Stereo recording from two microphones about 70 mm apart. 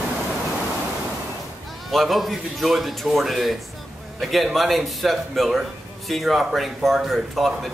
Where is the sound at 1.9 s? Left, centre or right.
Centre.